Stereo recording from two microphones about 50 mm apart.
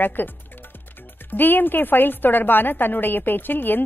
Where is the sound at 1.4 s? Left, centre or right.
Left.